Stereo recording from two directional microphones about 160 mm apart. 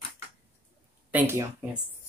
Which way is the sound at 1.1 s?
15° right (ahead or behind).